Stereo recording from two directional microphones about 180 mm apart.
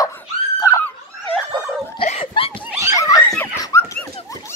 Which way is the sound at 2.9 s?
20° left (ahead or behind).